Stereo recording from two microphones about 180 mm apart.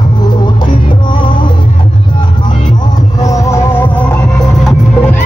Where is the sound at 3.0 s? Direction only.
20° left (ahead or behind).